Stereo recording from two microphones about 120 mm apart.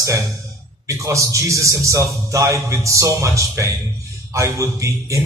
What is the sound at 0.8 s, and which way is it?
Speech, 25° right (ahead or behind).